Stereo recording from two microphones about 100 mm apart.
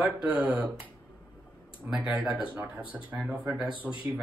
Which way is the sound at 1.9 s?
5° right (ahead or behind).